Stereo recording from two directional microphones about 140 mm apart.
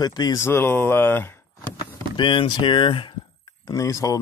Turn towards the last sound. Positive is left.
turn(degrees=25)  # may be behind; listen again after turning